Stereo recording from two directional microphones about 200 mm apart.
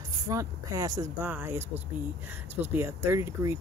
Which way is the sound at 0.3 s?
15° right (ahead or behind).